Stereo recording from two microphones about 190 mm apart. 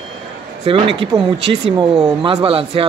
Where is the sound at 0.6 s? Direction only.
30° right (ahead or behind).